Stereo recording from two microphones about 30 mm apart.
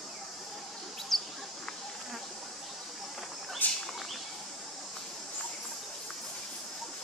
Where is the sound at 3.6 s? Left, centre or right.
Left.